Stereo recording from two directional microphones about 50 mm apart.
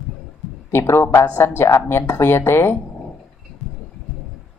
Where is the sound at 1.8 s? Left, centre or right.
Left.